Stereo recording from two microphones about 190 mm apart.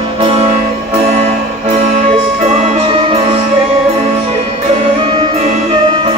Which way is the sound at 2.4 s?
35° right (ahead or behind).